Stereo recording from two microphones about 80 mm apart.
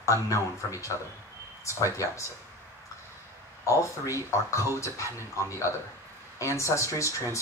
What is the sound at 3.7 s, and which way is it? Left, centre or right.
Speech, left.